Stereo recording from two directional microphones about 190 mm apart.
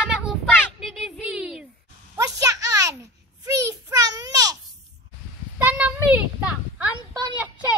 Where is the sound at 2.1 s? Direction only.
15° right (ahead or behind).